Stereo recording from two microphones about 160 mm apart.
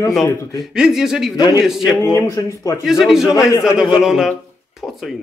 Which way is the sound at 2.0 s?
20° left (ahead or behind).